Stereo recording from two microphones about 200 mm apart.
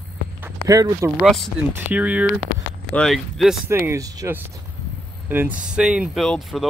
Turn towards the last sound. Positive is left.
turn(degrees=0)  # may be behind; listen again after turning